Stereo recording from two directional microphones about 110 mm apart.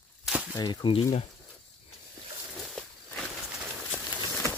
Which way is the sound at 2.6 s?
5° left (ahead or behind).